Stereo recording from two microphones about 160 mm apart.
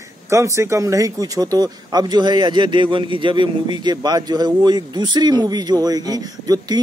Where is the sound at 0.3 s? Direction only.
20° right (ahead or behind).